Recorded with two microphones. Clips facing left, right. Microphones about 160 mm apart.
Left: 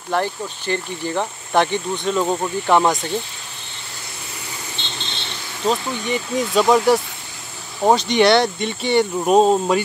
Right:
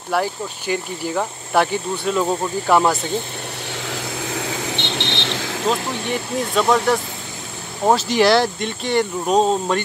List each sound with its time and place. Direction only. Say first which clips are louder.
0.1 s speech: even; 10° right (ahead or behind)
3.7 s vehicle: right 13 dB; 90° right
5.7 s speech: left 2 dB; centre (ahead or behind)